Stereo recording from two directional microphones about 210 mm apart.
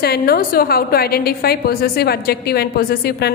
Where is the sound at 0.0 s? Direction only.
45° left (ahead or behind).